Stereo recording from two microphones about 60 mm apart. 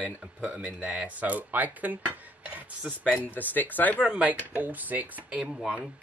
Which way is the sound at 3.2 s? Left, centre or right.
Left.